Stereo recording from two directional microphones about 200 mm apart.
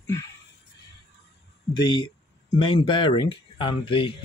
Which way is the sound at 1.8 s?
20° left (ahead or behind).